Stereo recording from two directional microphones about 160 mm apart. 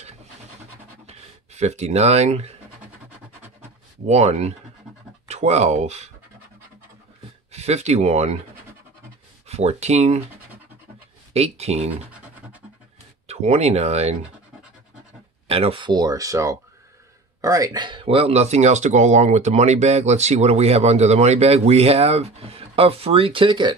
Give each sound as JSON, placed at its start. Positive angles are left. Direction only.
{"t": 1.0, "sound": "speech", "side_deg": -45}
{"t": 4.1, "sound": "speech", "side_deg": -45}
{"t": 7.5, "sound": "speech", "side_deg": -45}
{"t": 9.5, "sound": "speech", "side_deg": -40}
{"t": 11.3, "sound": "speech", "side_deg": -40}
{"t": 13.3, "sound": "speech", "side_deg": -40}
{"t": 15.4, "sound": "speech", "side_deg": -40}